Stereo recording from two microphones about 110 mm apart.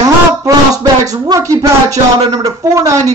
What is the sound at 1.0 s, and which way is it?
Speech, 35° right (ahead or behind).